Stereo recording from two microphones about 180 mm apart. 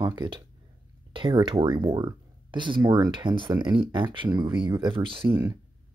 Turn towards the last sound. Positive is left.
turn(degrees=-15)  # may be behind; listen again after turning